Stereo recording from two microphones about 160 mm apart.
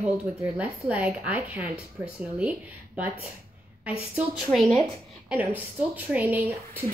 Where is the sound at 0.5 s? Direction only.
5° right (ahead or behind).